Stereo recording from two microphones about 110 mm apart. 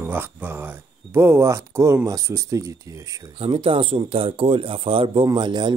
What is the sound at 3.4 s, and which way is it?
Speech, 55° right (ahead or behind).